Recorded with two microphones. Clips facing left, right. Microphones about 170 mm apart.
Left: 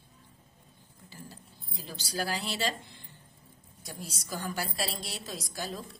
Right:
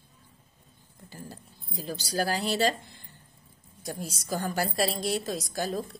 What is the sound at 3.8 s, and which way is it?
A woman's voice, 45° right (ahead or behind).